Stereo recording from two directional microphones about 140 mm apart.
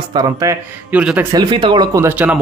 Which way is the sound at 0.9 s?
10° right (ahead or behind).